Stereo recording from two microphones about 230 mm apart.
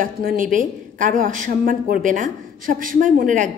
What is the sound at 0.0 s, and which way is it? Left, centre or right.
A woman's voice, right.